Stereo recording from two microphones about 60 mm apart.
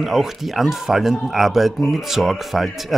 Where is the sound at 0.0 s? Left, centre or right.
Centre.